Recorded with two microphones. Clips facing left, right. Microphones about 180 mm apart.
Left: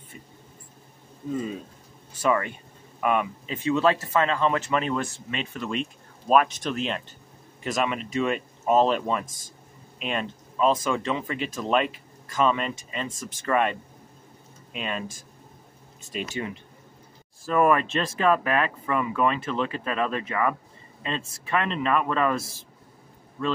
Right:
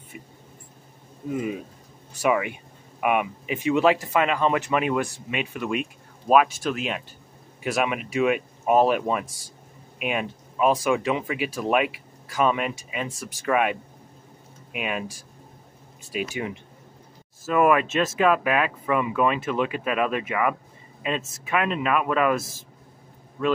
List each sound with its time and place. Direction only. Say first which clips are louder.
1.3 s speech: right 2 dB; 15° right (ahead or behind)
17.5 s speech: right 1 dB; 5° right (ahead or behind)
22.4 s speech: right 1 dB; 50° right (ahead or behind)